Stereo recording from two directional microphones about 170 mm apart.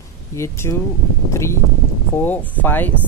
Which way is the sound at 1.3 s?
15° left (ahead or behind).